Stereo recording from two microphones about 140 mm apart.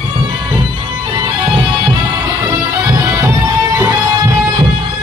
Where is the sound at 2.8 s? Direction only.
20° right (ahead or behind).